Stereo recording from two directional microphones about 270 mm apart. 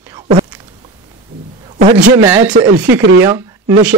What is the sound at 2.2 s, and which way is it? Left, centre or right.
Speech, centre.